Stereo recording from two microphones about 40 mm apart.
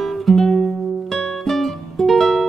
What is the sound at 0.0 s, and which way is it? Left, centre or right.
Music, centre.